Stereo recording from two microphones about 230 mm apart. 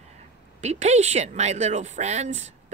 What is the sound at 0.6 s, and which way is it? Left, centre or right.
Speech, right.